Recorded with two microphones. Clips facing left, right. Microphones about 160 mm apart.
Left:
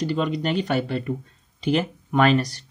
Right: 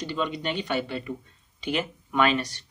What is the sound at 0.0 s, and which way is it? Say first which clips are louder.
Speech: left 5 dB; 40° left (ahead or behind).